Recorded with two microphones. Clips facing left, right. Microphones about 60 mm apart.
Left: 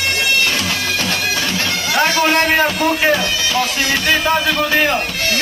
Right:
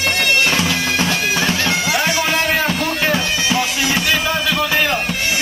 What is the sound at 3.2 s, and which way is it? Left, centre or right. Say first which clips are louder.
Music: even; centre.